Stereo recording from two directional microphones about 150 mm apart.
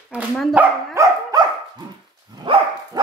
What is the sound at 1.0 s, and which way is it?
Dog, 20° right (ahead or behind).